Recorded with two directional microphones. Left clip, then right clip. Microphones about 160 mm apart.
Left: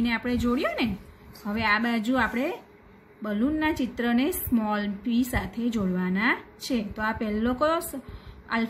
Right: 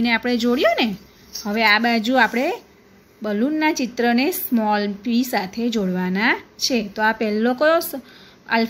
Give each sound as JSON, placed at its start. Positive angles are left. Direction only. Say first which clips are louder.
{"t": 0.0, "sound": "speech", "louder": "right 8 dB", "side_deg": -45}